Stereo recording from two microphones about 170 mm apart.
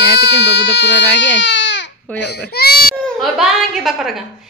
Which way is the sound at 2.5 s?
70° left (ahead or behind).